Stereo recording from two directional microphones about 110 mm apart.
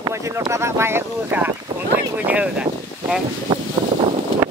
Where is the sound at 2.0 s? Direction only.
15° right (ahead or behind).